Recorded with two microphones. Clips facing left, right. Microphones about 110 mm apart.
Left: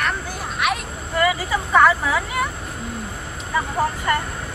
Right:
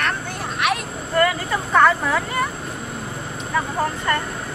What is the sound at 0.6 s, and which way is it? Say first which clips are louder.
Vehicle: right 1 dB; 5° left (ahead or behind).